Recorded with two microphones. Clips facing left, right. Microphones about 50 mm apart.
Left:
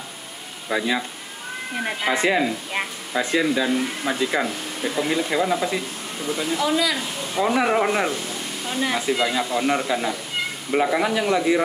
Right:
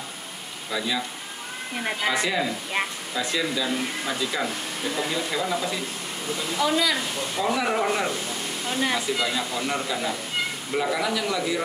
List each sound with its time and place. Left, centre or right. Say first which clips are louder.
0.7 s speech: left 5 dB; left
1.8 s speech: left 1 dB; centre
2.0 s speech: left 5 dB; left
6.6 s speech: right 1 dB; centre
7.3 s speech: left 5 dB; centre
8.6 s speech: left 1 dB; centre
9.0 s speech: left 4 dB; centre